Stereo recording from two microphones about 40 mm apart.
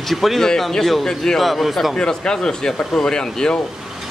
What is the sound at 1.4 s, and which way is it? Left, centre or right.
Speech, centre.